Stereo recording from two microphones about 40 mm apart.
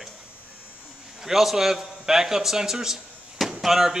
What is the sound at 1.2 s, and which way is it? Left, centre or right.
A man's voice, centre.